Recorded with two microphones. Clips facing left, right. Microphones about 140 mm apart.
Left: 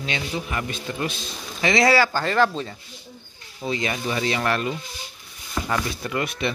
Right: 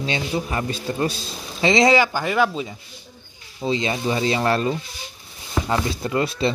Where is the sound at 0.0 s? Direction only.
30° right (ahead or behind); by 2.8 s 10° right (ahead or behind).